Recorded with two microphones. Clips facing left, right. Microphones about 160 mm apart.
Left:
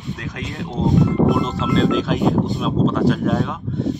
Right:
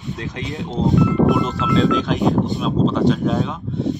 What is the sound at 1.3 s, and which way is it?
Speech, centre (ahead or behind).